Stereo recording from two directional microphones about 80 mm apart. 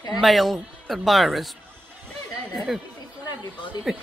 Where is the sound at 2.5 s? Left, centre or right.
Centre.